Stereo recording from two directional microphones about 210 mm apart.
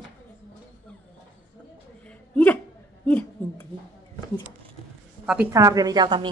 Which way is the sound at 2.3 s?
10° left (ahead or behind).